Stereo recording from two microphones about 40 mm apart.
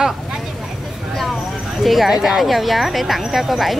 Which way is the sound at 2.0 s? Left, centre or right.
Centre.